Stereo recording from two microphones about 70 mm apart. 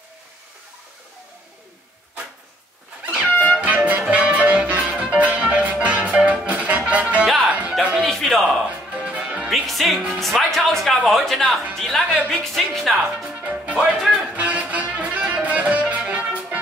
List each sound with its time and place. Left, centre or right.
3.6 s music: centre
8.0 s music: centre
8.6 s music: centre
9.5 s speech: centre
12.1 s speech: centre
12.5 s speech: centre
13.4 s music: centre
14.3 s music: right